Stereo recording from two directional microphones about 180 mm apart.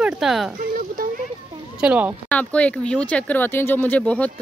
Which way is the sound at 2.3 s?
5° left (ahead or behind).